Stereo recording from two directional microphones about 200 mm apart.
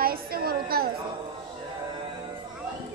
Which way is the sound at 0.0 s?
50° right (ahead or behind).